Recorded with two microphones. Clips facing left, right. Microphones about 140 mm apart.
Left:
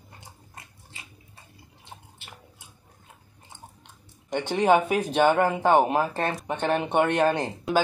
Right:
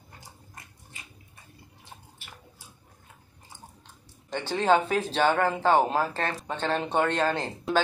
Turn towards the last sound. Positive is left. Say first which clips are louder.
# left 3 dB
turn(degrees=15)  # may be behind; listen again after turning